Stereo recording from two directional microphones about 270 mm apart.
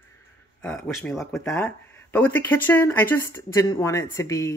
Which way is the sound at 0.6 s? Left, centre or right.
Centre.